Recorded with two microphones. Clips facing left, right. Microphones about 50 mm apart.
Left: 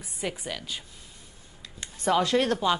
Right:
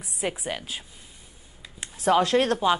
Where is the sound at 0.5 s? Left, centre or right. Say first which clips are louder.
Right 3 dB; right.